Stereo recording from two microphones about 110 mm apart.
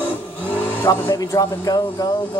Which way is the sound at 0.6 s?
20° left (ahead or behind).